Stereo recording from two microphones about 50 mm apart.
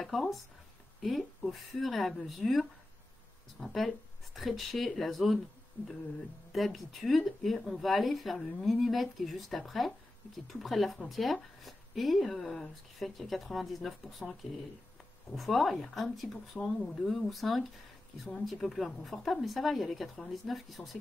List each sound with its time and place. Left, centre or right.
0.0 s speech: centre
3.6 s speech: centre
6.5 s speech: centre
15.3 s speech: centre